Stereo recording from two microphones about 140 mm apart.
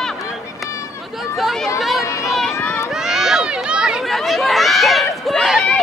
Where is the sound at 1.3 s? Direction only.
Centre (ahead or behind).